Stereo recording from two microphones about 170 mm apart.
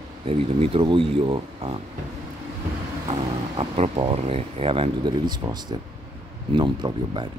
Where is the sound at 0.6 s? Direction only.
35° right (ahead or behind).